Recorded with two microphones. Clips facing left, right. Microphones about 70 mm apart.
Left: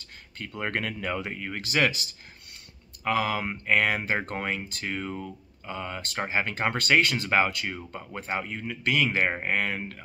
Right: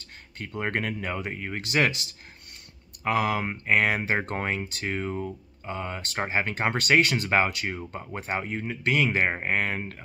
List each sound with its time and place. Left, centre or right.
0.6 s speech: centre
3.0 s speech: right